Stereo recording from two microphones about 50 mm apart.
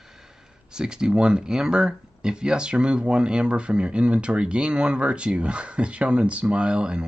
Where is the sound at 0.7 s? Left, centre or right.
Centre.